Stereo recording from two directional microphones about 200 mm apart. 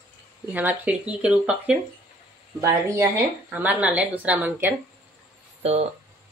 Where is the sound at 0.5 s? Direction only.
10° right (ahead or behind).